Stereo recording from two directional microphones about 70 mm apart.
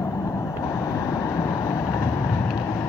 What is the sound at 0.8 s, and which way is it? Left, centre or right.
Vehicle, left.